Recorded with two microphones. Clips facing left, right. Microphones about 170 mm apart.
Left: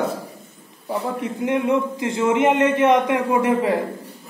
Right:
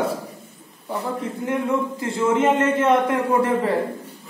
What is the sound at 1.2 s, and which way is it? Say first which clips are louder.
A man's voice: left 4 dB; 20° left (ahead or behind).